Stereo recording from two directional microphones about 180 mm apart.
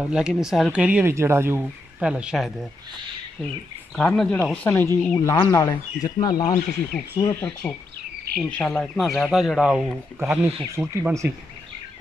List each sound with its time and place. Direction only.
0.0 s speech: 5° right (ahead or behind)
3.9 s speech: 5° left (ahead or behind); by 6.6 s 20° left (ahead or behind)
7.3 s speech: 10° left (ahead or behind); by 11.3 s 10° right (ahead or behind)